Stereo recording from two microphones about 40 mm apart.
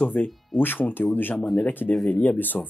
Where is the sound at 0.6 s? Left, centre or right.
Left.